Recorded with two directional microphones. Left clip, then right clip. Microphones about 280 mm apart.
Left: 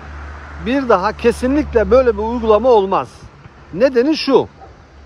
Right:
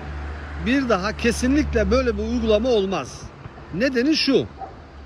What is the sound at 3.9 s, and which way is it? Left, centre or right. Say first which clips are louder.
Speech: left 4 dB; centre.